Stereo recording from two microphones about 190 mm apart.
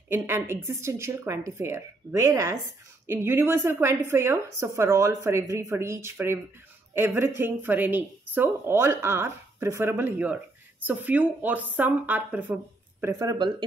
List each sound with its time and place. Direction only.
0.1 s speech: 10° right (ahead or behind)